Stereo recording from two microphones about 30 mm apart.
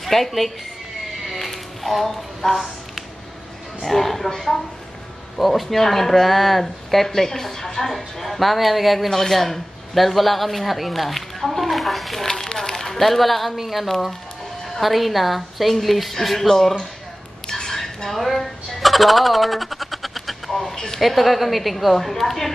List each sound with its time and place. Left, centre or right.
0.0 s speech: centre
1.2 s sheep: centre
3.8 s speech: centre
12.5 s speech: centre
17.5 s a sound: centre
20.7 s speech: centre
21.0 s speech: centre